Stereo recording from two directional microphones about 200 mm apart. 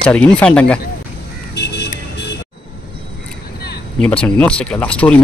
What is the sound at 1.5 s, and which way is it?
Vehicle, 60° left (ahead or behind).